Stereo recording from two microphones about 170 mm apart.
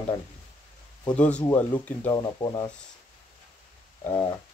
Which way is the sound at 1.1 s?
5° left (ahead or behind).